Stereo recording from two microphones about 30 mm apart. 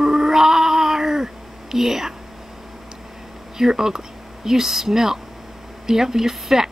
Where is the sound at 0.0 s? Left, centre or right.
Centre.